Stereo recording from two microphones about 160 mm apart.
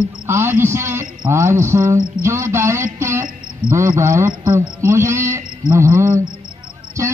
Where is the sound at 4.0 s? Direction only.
15° right (ahead or behind).